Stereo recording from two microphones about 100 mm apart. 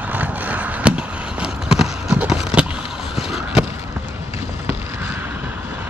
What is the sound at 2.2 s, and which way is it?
Vehicle, 10° right (ahead or behind).